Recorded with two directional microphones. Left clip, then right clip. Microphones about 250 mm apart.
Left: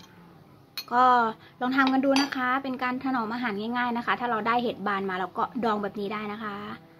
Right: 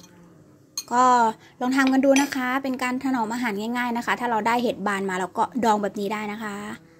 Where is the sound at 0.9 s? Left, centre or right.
Right.